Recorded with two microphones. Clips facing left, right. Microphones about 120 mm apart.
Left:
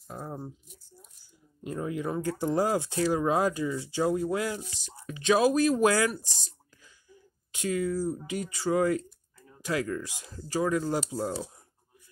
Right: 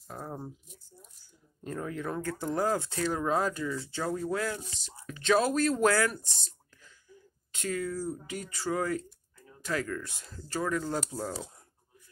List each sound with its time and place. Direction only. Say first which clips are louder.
0.1 s a sound: left 1 dB; 5° left (ahead or behind)
1.6 s speech: left 3 dB; 10° left (ahead or behind)
7.5 s speech: left 4 dB; 15° left (ahead or behind)